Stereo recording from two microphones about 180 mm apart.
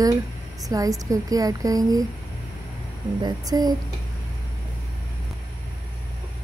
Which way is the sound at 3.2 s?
20° right (ahead or behind).